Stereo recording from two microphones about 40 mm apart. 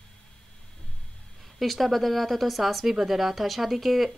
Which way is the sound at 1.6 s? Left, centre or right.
Centre.